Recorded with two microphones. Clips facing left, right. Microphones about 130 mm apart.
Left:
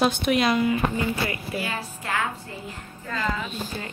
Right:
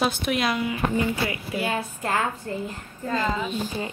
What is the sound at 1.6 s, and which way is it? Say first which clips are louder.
Speech: right 4 dB; 40° right (ahead or behind).